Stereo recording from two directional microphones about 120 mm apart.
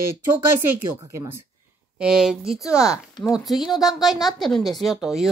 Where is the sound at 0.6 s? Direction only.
20° right (ahead or behind).